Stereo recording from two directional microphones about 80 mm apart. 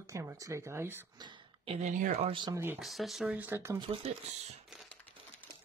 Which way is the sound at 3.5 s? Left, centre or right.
Right.